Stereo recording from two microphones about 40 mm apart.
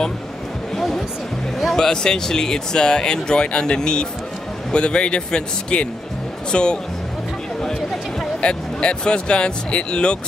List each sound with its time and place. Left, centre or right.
0.7 s a sound: centre
1.8 s speech: centre
8.4 s speech: left